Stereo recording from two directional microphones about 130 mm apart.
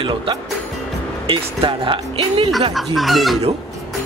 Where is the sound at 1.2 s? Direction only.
40° right (ahead or behind).